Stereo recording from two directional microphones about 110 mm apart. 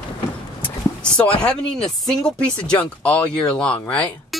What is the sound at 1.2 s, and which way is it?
Speech, 10° left (ahead or behind).